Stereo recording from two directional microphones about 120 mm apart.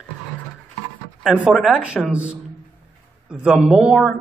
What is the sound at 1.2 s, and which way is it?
Speech, 10° right (ahead or behind).